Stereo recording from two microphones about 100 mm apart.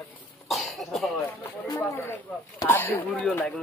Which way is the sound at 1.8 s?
25° left (ahead or behind).